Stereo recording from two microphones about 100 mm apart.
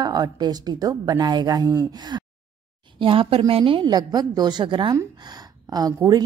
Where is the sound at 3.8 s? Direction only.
40° right (ahead or behind).